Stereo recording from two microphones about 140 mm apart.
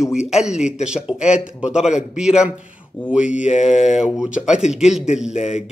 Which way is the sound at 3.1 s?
10° right (ahead or behind).